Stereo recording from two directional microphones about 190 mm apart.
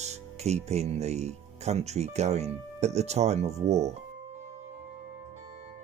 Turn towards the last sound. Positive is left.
turn(degrees=-35)  # may be behind; listen again after turning